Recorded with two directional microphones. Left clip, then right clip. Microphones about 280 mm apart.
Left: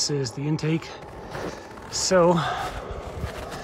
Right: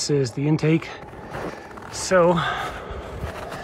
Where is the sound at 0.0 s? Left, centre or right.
Centre.